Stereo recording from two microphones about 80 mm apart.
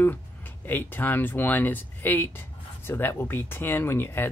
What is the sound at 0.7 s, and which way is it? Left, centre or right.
Speech, left.